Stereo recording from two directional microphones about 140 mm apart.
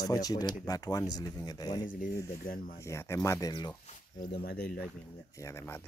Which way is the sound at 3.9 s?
55° left (ahead or behind).